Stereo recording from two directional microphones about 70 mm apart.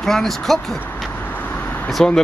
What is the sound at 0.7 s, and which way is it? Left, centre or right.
Vehicle, left.